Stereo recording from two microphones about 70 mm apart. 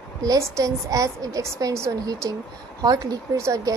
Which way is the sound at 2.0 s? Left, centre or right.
Right.